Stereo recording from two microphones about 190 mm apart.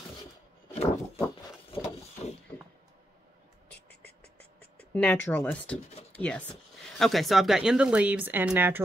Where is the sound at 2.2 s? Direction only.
35° left (ahead or behind).